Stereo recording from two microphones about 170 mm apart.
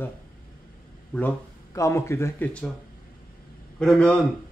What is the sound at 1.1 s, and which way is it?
Speech, 10° left (ahead or behind).